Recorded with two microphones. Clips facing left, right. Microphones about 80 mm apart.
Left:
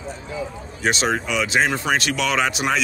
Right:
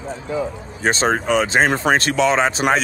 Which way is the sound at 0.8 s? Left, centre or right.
Right.